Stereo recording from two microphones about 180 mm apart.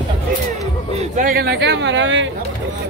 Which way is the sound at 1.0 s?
45° right (ahead or behind).